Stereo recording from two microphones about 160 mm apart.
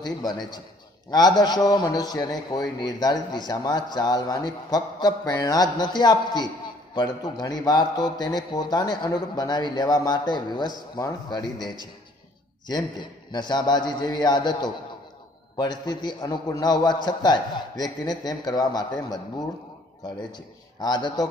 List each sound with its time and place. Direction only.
0.0 s a man's voice: 25° left (ahead or behind)
12.6 s a man's voice: 25° left (ahead or behind)